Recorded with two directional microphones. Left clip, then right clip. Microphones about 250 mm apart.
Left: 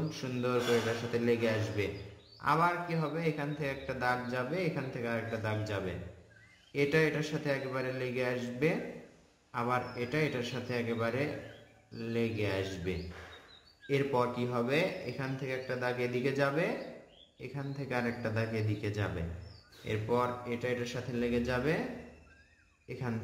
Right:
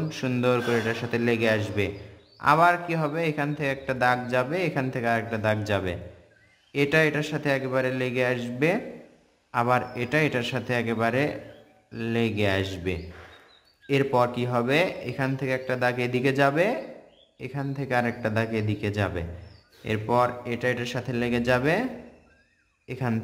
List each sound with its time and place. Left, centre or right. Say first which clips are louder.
0.1 s a man's voice: right 10 dB; right
22.8 s a man's voice: right 9 dB; right